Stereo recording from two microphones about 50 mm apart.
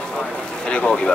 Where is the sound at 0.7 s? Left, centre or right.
Left.